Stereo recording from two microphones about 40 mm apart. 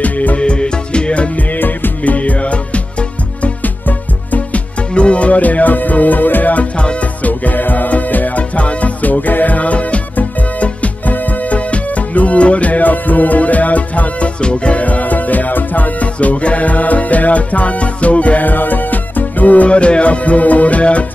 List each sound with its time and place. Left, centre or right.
0.0 s music: left
0.4 s music: left
3.6 s music: left
4.9 s music: left
14.4 s music: left